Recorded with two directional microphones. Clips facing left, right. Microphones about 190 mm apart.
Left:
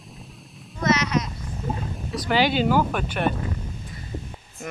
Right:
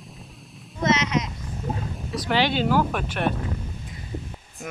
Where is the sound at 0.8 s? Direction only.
25° right (ahead or behind).